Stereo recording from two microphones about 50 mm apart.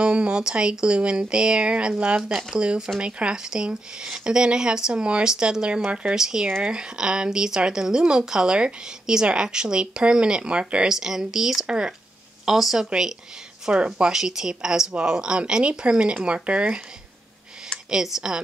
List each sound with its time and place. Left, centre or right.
0.0 s speech: centre
13.9 s speech: centre
17.8 s speech: centre